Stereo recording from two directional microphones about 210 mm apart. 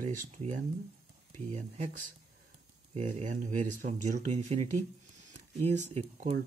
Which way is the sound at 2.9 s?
35° right (ahead or behind).